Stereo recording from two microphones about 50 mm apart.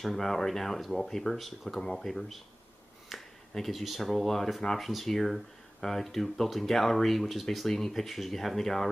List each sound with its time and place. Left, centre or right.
0.0 s speech: centre